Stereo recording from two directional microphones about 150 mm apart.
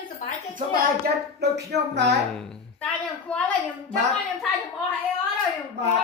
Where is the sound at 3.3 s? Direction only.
10° left (ahead or behind).